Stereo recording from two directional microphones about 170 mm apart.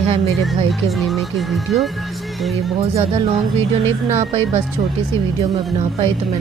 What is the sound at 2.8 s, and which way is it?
Speech, 35° right (ahead or behind).